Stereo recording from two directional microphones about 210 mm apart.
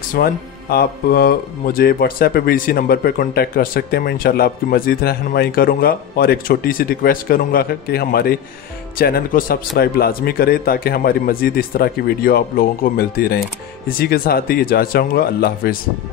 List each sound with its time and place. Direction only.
0.1 s speech: 45° left (ahead or behind)